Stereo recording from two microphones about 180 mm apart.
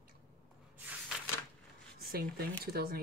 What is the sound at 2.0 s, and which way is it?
Speech, 60° right (ahead or behind).